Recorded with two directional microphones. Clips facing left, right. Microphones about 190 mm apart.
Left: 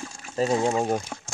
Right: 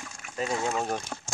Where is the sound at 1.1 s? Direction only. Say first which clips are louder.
Left 1 dB; 5° left (ahead or behind).